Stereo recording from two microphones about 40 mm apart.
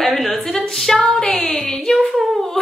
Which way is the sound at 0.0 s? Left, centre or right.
Centre.